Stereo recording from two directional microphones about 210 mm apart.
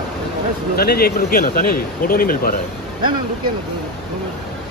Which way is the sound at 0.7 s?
45° left (ahead or behind).